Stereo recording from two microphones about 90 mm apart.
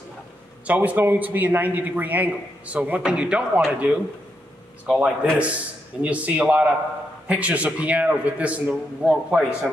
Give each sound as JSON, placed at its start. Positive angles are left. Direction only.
{"t": 0.7, "sound": "a man's voice", "side_deg": -20}
{"t": 4.8, "sound": "a man's voice", "side_deg": -5}